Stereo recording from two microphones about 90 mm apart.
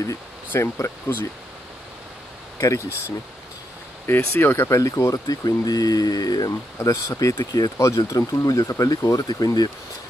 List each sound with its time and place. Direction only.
0.5 s speech: 30° left (ahead or behind)
2.6 s speech: 35° left (ahead or behind)
4.0 s speech: 25° left (ahead or behind)
4.7 s speech: 40° left (ahead or behind)